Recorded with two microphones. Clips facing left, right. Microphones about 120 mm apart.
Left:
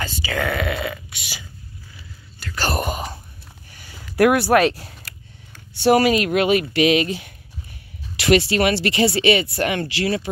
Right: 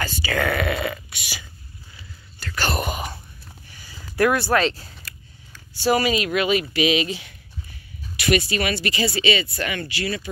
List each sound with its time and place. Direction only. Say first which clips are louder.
0.0 s speech: right 1 dB; 15° left (ahead or behind)
0.8 s a sound: right 1 dB; 20° left (ahead or behind)
2.5 s speech: left 1 dB; 35° left (ahead or behind)
2.8 s wail: left 2 dB; 5° right (ahead or behind)
3.7 s a sound: left 4 dB; 60° left (ahead or behind)
6.7 s speech: left 4 dB; 55° left (ahead or behind)
8.2 s speech: left 5 dB; 80° left